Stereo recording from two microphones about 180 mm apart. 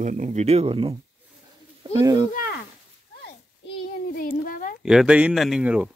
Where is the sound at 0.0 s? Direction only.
40° right (ahead or behind).